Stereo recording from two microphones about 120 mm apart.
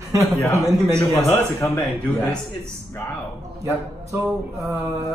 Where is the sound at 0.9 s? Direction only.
15° left (ahead or behind).